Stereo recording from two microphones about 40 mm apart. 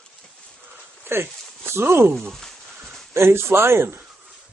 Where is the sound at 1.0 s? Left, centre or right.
Right.